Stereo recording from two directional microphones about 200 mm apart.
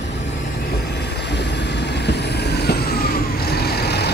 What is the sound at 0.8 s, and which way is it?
Vehicle, 55° left (ahead or behind).